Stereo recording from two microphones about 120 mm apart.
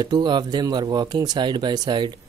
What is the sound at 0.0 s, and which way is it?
A man's voice, 35° right (ahead or behind).